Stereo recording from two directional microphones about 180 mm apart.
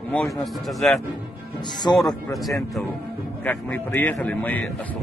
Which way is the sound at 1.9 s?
20° left (ahead or behind).